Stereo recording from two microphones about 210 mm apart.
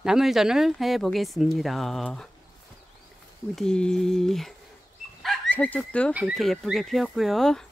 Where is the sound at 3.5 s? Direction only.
5° left (ahead or behind).